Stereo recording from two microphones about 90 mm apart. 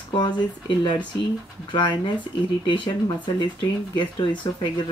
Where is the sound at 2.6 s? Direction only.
60° left (ahead or behind).